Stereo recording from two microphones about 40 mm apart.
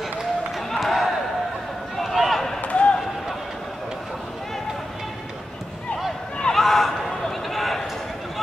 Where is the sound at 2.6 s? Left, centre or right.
Left.